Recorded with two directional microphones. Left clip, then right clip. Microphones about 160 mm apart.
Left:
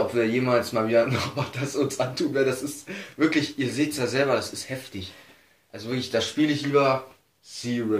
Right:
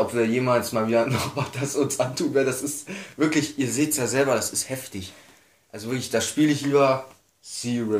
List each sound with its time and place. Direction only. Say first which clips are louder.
0.1 s speech: right 1 dB; 35° right (ahead or behind)